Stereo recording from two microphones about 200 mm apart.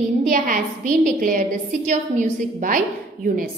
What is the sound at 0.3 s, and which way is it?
A woman's voice, 45° right (ahead or behind).